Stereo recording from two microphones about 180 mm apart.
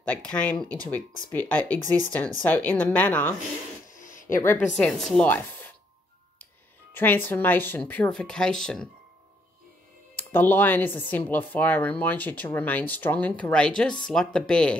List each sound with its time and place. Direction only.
0.0 s speech: 5° left (ahead or behind)
3.9 s a sound: 45° left (ahead or behind)
4.3 s speech: 15° left (ahead or behind)
6.9 s speech: 10° left (ahead or behind)
10.1 s speech: 10° left (ahead or behind)